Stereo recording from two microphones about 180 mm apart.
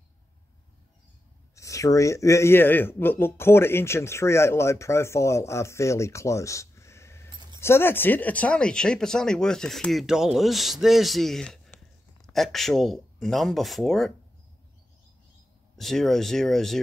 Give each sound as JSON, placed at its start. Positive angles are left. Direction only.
{"t": 1.5, "sound": "a man's voice", "side_deg": 15}
{"t": 7.2, "sound": "a sound", "side_deg": -25}
{"t": 7.6, "sound": "speech", "side_deg": 15}
{"t": 15.8, "sound": "speech", "side_deg": 0}